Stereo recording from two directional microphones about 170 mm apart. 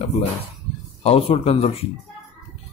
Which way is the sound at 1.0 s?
35° left (ahead or behind).